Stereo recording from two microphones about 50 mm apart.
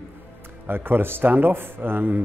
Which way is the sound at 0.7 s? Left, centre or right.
Right.